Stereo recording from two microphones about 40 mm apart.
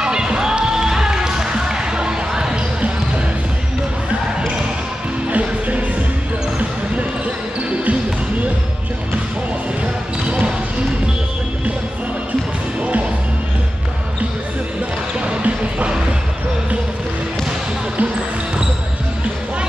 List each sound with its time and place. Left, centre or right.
0.0 s basketball bounce: right
10.2 s basketball bounce: right
15.1 s basketball bounce: right